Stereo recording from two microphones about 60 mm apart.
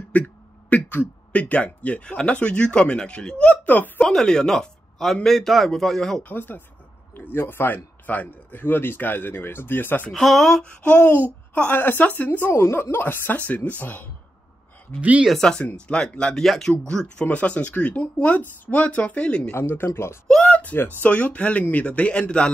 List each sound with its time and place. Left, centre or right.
0.1 s speech: left
3.6 s speech: left
4.0 s speech: centre
6.2 s speech: left
10.1 s speech: centre
10.8 s speech: left
15.0 s speech: right
15.3 s speech: centre
16.4 s speech: centre
19.5 s speech: left
20.4 s a sound: left
21.0 s speech: left